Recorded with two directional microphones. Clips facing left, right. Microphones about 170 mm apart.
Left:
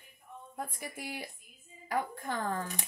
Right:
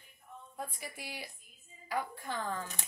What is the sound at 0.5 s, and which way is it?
Speech, 50° left (ahead or behind).